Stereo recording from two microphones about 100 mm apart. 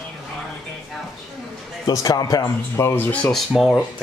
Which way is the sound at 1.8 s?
40° left (ahead or behind).